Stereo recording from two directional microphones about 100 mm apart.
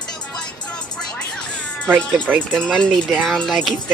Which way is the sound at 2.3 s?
20° right (ahead or behind).